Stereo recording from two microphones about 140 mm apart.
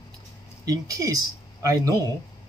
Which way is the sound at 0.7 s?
25° right (ahead or behind).